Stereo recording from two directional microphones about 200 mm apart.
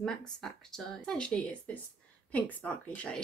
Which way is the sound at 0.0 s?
5° left (ahead or behind).